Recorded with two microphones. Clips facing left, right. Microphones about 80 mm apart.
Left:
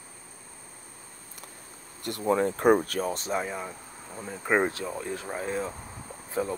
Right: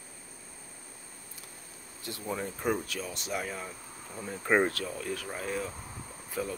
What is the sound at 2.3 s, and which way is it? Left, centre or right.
Speech, left.